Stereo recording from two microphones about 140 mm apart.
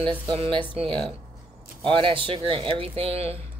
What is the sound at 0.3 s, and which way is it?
Speech, 35° right (ahead or behind).